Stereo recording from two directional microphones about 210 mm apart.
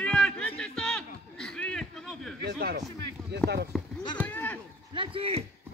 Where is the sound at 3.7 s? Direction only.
Centre (ahead or behind).